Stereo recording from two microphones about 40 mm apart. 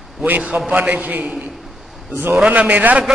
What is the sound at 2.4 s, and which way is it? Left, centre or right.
Speech, right.